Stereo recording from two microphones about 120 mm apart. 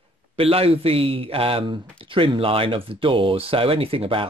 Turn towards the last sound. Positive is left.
turn(degrees=-50)  # may be behind; listen again after turning